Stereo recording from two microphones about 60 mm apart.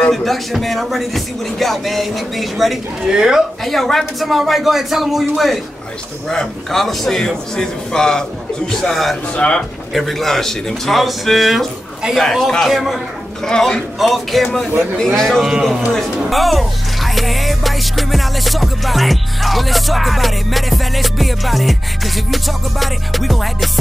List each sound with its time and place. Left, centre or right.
0.1 s music: centre
3.6 s music: centre
6.2 s a man's voice: centre
9.3 s a man's voice: centre
9.9 s music: centre
13.4 s music: centre
15.4 s a man's voice: centre
15.9 s speech: centre